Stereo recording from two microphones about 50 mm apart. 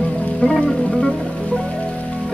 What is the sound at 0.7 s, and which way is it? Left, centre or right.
Music, centre.